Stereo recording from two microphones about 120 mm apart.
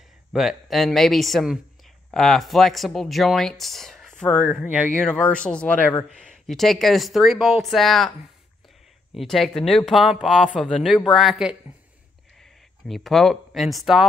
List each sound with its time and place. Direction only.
0.3 s speech: centre (ahead or behind)
9.1 s speech: centre (ahead or behind)
12.8 s speech: centre (ahead or behind)